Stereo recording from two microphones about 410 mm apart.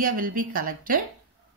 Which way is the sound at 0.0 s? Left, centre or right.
Right.